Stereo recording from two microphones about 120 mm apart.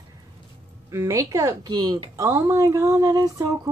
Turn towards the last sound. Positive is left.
turn(degrees=-30)  # may be behind; listen again after turning